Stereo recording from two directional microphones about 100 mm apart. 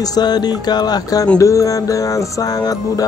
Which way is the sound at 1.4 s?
30° left (ahead or behind).